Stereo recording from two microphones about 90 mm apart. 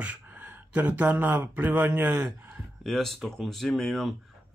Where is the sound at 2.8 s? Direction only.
5° left (ahead or behind).